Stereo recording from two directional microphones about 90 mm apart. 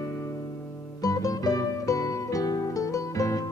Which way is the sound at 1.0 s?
40° left (ahead or behind).